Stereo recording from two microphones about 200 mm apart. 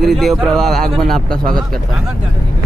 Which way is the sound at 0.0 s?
Centre (ahead or behind).